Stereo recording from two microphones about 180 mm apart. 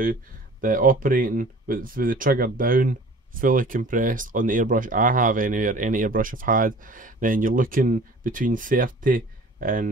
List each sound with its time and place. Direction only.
0.0 s speech: 50° right (ahead or behind)